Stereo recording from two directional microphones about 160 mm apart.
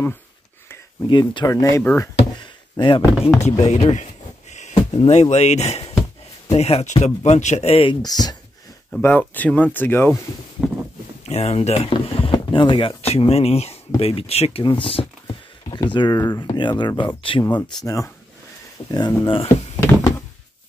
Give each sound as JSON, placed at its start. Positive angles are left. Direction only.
{"t": 1.0, "sound": "speech", "side_deg": 25}
{"t": 2.4, "sound": "a sound", "side_deg": 30}
{"t": 3.3, "sound": "speech", "side_deg": 45}
{"t": 8.9, "sound": "speech", "side_deg": 10}
{"t": 11.2, "sound": "speech", "side_deg": 40}
{"t": 17.8, "sound": "speech", "side_deg": 20}